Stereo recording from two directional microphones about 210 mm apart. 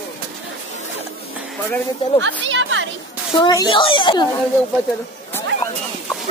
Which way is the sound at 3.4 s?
20° left (ahead or behind).